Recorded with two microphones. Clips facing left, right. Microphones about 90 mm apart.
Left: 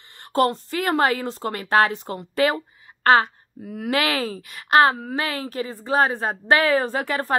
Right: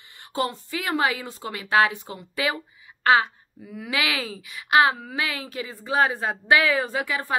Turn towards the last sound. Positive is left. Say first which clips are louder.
# left 3 dB
turn(degrees=45)  # may be behind; listen again after turning